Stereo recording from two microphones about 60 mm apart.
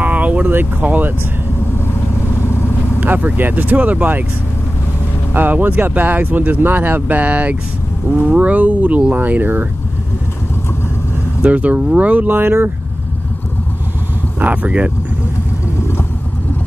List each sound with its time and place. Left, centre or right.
0.0 s vehicle: right
0.5 s speech: right
3.0 s speech: right
5.3 s speech: right
11.4 s speech: right
14.4 s speech: right